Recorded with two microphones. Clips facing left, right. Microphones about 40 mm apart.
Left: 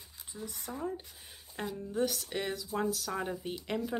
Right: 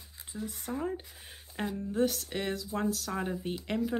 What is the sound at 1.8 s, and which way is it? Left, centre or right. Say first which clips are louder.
Speech: right 3 dB; centre.